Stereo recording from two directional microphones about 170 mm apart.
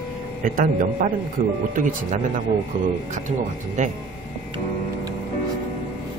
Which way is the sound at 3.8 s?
45° right (ahead or behind).